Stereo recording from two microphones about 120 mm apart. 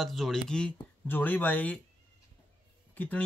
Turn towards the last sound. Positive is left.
turn(degrees=15)  # may be behind; listen again after turning